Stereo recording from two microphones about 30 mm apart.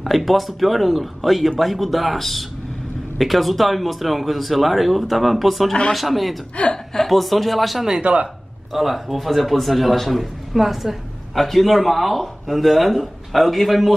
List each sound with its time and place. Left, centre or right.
0.0 s speech: centre
6.6 s a woman's voice: left
7.0 s speech: centre
8.1 s speech: right
8.7 s a woman's voice: centre
11.3 s speech: centre